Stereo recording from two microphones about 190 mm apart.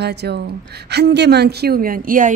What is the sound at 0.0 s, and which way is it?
A woman's voice, 60° right (ahead or behind).